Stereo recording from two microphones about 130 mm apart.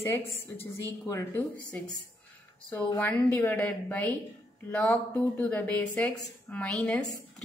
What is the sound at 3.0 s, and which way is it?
Speech, 15° left (ahead or behind).